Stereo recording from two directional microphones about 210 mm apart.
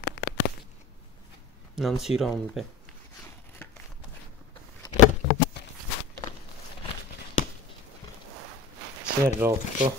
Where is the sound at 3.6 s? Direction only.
10° left (ahead or behind).